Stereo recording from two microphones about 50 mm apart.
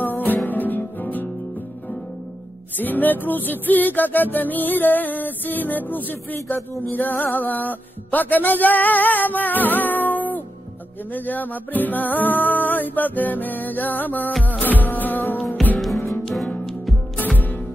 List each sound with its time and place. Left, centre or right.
0.0 s music: left
2.8 s music: left
17.2 s music: left